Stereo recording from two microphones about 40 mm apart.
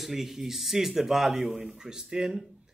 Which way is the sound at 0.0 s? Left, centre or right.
Centre.